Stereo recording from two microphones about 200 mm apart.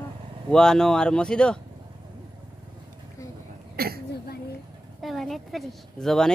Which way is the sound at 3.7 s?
50° right (ahead or behind).